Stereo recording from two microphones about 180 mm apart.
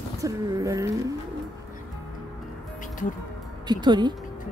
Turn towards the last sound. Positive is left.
turn(degrees=-25)  # may be behind; listen again after turning